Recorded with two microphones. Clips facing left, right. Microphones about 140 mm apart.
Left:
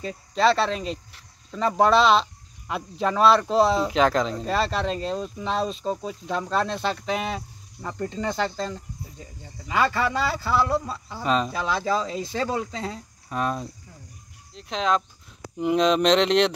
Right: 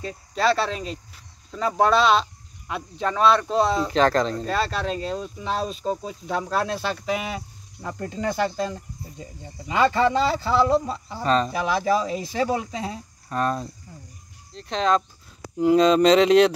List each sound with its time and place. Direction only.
0.0 s speech: centre (ahead or behind)
9.7 s speech: 25° right (ahead or behind)
11.2 s speech: 5° left (ahead or behind)
11.5 s speech: 15° right (ahead or behind)
13.3 s speech: 5° left (ahead or behind)